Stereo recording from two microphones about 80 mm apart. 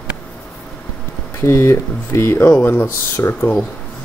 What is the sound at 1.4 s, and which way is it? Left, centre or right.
Speech, left.